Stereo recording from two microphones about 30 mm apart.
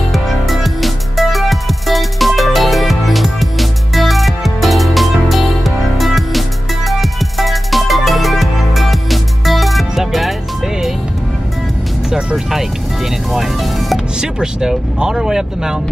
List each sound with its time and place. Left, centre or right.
0.1 s music: centre
12.4 s music: centre
13.3 s music: centre
14.2 s music: right
15.0 s speech: centre